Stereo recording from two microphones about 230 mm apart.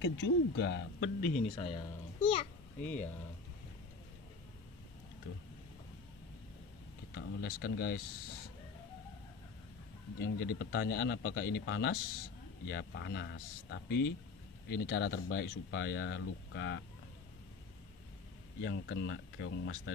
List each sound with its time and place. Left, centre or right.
0.0 s speech: left
1.3 s speech: left
2.8 s speech: centre
7.2 s speech: left
10.1 s speech: left
18.6 s speech: left